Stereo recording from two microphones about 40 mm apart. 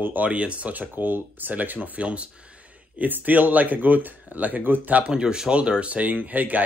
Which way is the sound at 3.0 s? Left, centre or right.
Right.